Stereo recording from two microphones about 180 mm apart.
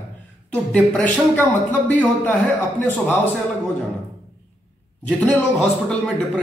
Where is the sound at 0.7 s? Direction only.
5° left (ahead or behind).